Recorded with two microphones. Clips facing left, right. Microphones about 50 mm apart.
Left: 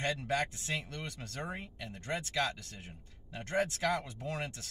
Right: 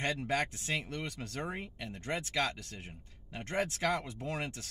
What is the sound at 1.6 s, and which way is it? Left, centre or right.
Speech, right.